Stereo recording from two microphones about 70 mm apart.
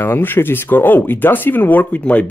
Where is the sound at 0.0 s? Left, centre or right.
Left.